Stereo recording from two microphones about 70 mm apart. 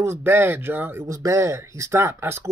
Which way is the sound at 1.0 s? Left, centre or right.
Right.